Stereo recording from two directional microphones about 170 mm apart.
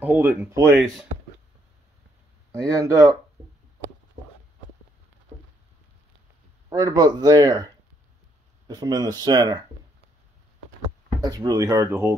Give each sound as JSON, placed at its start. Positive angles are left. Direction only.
{"t": 0.0, "sound": "speech", "side_deg": -10}
{"t": 2.6, "sound": "speech", "side_deg": -20}
{"t": 3.4, "sound": "a sound", "side_deg": -40}
{"t": 6.7, "sound": "speech", "side_deg": -25}
{"t": 8.6, "sound": "speech", "side_deg": -25}
{"t": 11.1, "sound": "speech", "side_deg": -20}